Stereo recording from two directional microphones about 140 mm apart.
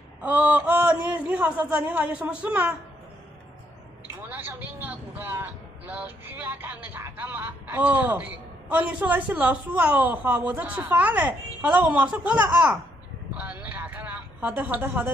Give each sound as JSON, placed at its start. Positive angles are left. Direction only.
{"t": 0.2, "sound": "a man's voice", "side_deg": -10}
{"t": 4.1, "sound": "speech", "side_deg": -15}
{"t": 13.4, "sound": "a sound", "side_deg": -10}